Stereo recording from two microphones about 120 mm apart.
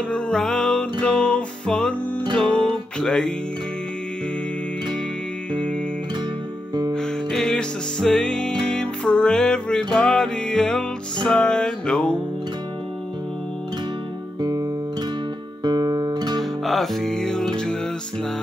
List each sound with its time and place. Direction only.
0.1 s music: 5° left (ahead or behind)
6.9 s music: 5° left (ahead or behind)
14.4 s guitar: 35° right (ahead or behind)
16.6 s music: centre (ahead or behind)